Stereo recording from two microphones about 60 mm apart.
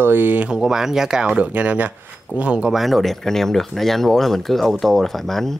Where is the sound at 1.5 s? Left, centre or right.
Right.